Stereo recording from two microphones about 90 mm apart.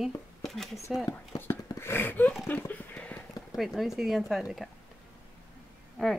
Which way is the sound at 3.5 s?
Centre (ahead or behind).